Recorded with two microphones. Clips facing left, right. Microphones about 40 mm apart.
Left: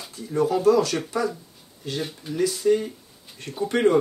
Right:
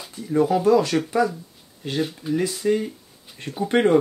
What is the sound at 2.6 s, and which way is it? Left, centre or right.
Speech, right.